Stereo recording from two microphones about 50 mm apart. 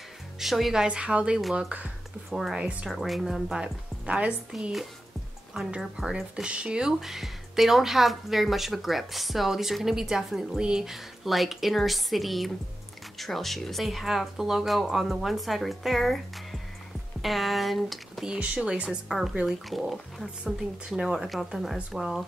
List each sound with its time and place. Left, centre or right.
0.4 s speech: centre
0.8 s a woman's voice: right
2.3 s a woman's voice: centre
3.5 s a woman's voice: centre
10.6 s a woman's voice: centre
10.9 s speech: centre
17.2 s speech: centre
18.4 s a woman's voice: right
18.9 s speech: centre
20.4 s a woman's voice: centre